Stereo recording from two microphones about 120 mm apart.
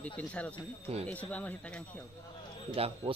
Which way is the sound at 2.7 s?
50° right (ahead or behind).